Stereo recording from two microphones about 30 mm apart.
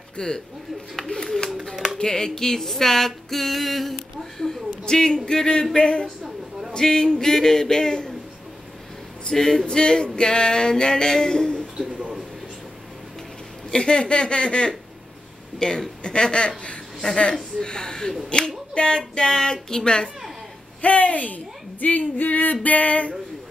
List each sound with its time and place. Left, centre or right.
0.2 s a woman's voice: left
0.9 s a sound: centre
2.0 s a sound: left
4.8 s a woman's voice: left
6.8 s speech: centre
9.3 s a sound: centre
9.7 s speech: left
13.7 s a woman's voice: left
18.3 s a woman's voice: left
18.8 s speech: left
20.8 s a woman's voice: left